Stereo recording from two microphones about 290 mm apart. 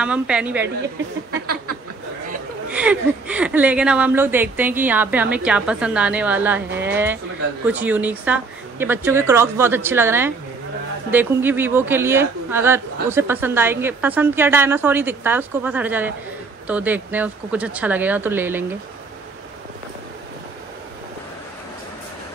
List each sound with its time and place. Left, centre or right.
0.0 s speech: centre
1.3 s a sound: right
2.7 s speech: centre